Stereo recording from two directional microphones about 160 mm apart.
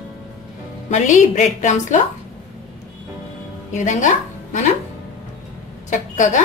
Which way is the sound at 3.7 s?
50° left (ahead or behind).